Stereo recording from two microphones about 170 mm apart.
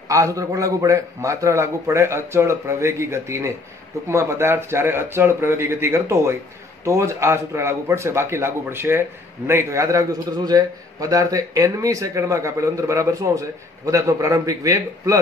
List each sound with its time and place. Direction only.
0.1 s a man's voice: 20° right (ahead or behind)